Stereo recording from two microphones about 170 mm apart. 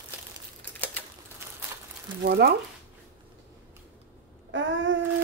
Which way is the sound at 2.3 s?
70° right (ahead or behind).